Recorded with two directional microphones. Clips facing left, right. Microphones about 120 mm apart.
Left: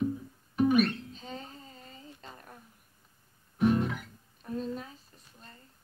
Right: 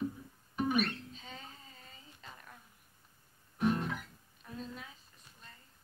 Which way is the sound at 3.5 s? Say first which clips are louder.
Left 6 dB; 15° left (ahead or behind).